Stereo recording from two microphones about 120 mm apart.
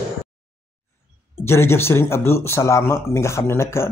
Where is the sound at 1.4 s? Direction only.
20° left (ahead or behind).